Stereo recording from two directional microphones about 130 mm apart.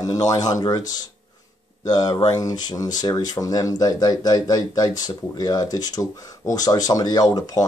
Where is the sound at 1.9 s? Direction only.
30° left (ahead or behind).